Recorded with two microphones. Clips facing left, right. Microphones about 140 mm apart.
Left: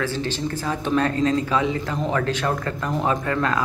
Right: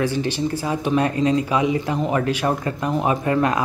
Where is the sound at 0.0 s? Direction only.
15° right (ahead or behind).